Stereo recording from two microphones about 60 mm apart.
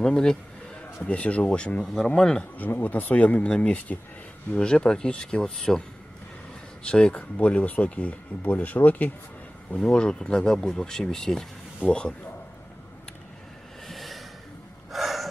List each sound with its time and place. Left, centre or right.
0.0 s speech: centre
2.5 s speech: left
3.4 s speech: centre
9.8 s speech: centre
13.8 s snort: centre
14.9 s gasp: centre